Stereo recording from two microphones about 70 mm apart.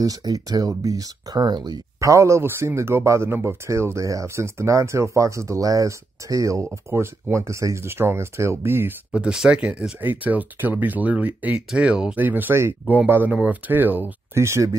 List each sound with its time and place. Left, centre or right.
0.0 s speech: right
2.0 s speech: right
9.1 s speech: centre
12.2 s speech: right
14.3 s speech: right